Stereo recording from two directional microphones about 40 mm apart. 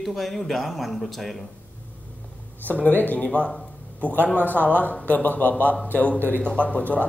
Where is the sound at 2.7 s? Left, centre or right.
Left.